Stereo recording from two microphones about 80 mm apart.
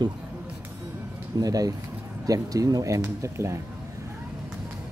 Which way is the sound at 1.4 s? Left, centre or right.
Right.